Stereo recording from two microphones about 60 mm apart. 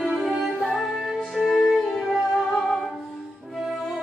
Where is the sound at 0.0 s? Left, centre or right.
Centre.